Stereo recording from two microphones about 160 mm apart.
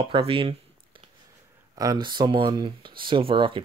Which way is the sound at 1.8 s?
25° right (ahead or behind).